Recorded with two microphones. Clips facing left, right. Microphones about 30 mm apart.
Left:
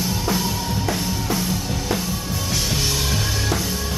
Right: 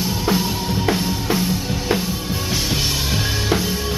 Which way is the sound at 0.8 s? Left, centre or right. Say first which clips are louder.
Right 5 dB; right.